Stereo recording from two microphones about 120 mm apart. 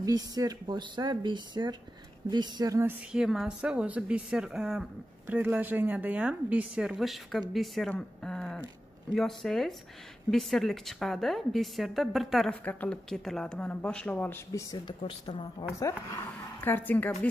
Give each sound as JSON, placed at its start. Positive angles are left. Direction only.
{"t": 0.0, "sound": "speech", "side_deg": -30}
{"t": 3.1, "sound": "speech", "side_deg": -5}
{"t": 7.9, "sound": "a sound", "side_deg": 5}
{"t": 9.1, "sound": "a woman's voice", "side_deg": 5}
{"t": 14.9, "sound": "a woman's voice", "side_deg": 45}
{"t": 16.6, "sound": "speech", "side_deg": 15}